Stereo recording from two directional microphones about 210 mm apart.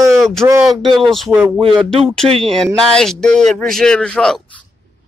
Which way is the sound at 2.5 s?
Centre (ahead or behind).